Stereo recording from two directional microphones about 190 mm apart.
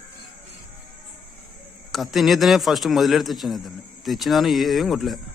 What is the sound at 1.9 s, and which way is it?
A man's voice, centre (ahead or behind).